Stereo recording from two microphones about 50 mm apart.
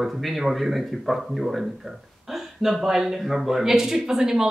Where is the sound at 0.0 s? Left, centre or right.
Centre.